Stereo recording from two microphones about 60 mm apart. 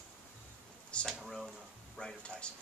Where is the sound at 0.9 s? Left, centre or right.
Centre.